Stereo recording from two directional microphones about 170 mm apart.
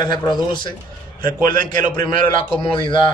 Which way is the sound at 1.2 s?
55° right (ahead or behind).